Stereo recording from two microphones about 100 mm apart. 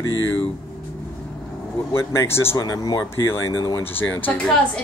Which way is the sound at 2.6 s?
40° left (ahead or behind).